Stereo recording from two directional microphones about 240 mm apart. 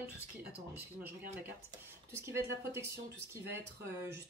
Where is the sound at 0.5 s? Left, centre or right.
Centre.